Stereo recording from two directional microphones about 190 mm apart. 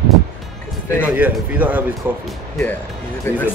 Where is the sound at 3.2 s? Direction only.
10° left (ahead or behind).